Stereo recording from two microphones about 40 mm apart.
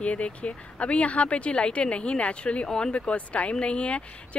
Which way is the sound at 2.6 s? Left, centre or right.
Left.